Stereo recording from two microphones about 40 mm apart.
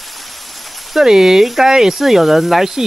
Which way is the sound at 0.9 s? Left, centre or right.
Centre.